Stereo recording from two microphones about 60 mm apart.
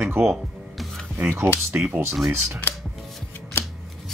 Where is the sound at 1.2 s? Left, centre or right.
Right.